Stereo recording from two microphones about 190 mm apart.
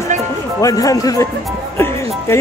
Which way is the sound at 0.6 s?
20° left (ahead or behind).